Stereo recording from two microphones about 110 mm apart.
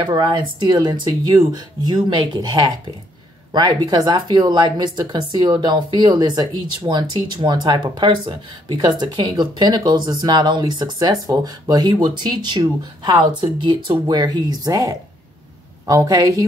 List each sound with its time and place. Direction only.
0.0 s speech: 45° right (ahead or behind)